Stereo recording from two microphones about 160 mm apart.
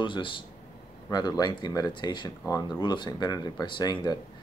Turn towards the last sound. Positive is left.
turn(degrees=25)  # may be behind; listen again after turning